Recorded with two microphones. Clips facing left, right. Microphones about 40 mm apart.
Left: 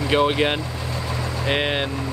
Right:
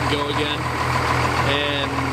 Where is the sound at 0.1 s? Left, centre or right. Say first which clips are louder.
Left 3 dB; left.